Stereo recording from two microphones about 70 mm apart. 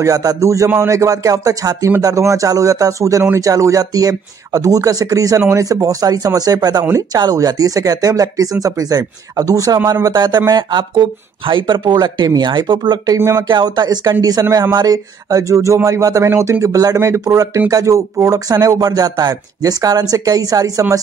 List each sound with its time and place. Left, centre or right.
0.0 s speech: right
10.0 s speech: right
14.4 s speech: right
16.3 s speech: right